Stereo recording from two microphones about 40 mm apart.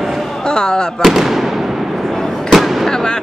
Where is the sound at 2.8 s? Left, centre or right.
Centre.